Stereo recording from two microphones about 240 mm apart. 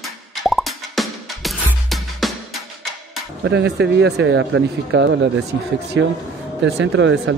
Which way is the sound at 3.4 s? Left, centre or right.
Right.